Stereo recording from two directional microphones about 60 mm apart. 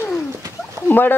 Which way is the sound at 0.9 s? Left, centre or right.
Left.